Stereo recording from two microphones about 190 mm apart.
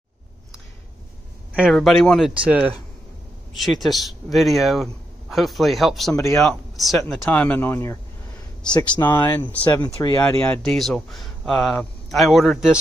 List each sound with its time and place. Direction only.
1.5 s speech: centre (ahead or behind)
8.6 s speech: 25° left (ahead or behind)
9.0 s speech: 10° left (ahead or behind)
10.4 s speech: 5° left (ahead or behind)